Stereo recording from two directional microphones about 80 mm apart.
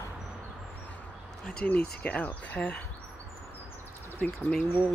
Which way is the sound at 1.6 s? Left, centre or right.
Centre.